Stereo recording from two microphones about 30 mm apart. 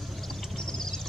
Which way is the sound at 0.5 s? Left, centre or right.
Centre.